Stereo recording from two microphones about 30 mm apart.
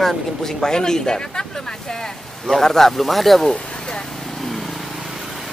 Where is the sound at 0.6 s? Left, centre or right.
Left.